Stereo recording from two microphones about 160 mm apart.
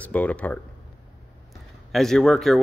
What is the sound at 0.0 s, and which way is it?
Speech, 10° left (ahead or behind).